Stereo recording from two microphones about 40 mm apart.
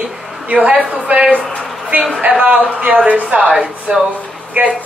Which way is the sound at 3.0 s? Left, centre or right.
Right.